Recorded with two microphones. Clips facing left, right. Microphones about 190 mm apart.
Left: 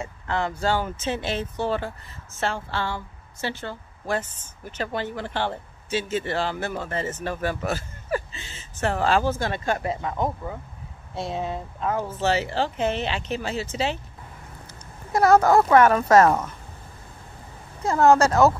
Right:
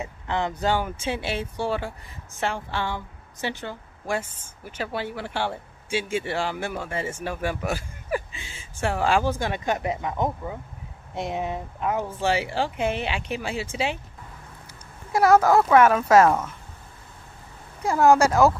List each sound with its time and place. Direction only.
0.0 s speech: 20° right (ahead or behind)
15.1 s speech: 5° right (ahead or behind)
17.8 s speech: 10° right (ahead or behind)